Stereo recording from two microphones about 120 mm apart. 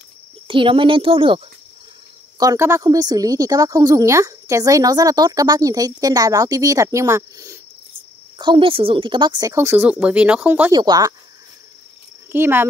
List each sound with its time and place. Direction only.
0.5 s speech: 45° right (ahead or behind)
2.3 s a woman's voice: 25° right (ahead or behind)
8.4 s speech: 45° right (ahead or behind)
9.5 s speech: 20° right (ahead or behind)
9.8 s speech: 10° right (ahead or behind)
10.7 s a woman's voice: 35° right (ahead or behind)
12.3 s speech: 20° right (ahead or behind)